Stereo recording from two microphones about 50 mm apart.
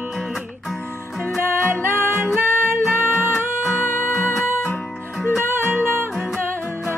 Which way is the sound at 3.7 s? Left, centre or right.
Left.